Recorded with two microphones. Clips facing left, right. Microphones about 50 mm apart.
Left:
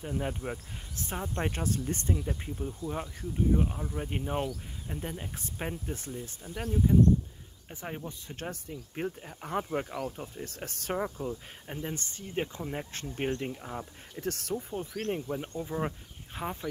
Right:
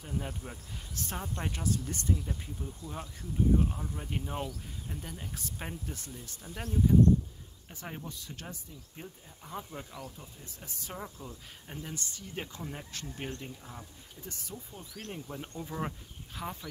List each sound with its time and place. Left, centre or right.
0.0 s speech: left
5.9 s speech: left
7.7 s speech: centre
8.4 s speech: left
10.4 s speech: left
11.0 s speech: left
14.2 s speech: left
14.7 s speech: left
15.2 s speech: centre
16.3 s speech: left